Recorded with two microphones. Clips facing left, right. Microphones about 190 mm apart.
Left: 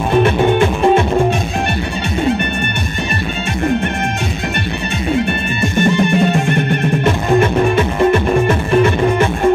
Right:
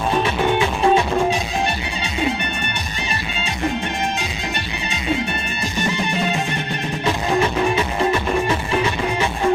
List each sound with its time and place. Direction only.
0.2 s music: 55° left (ahead or behind)
5.8 s music: 55° left (ahead or behind)